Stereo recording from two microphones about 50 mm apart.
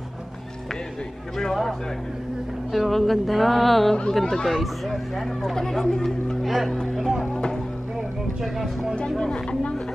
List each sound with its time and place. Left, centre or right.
1.3 s speech: centre
7.3 s music: centre
8.4 s speech: centre
9.1 s speech: centre